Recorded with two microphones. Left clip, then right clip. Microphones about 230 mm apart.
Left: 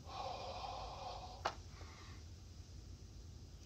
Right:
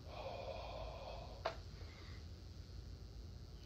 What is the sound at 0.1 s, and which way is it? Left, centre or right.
Snort, left.